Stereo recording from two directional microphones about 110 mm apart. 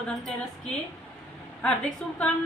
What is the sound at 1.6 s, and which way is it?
Speech, 10° left (ahead or behind).